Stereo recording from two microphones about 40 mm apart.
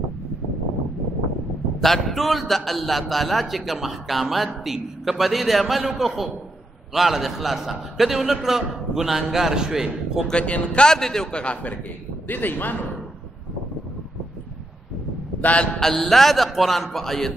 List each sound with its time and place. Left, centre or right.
1.8 s a man's voice: centre
10.3 s speech: left
10.9 s speech: centre
11.3 s a man's voice: left
12.3 s speech: left
15.4 s speech: left
15.7 s a man's voice: centre